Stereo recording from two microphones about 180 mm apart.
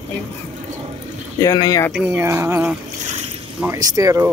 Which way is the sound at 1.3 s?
20° left (ahead or behind).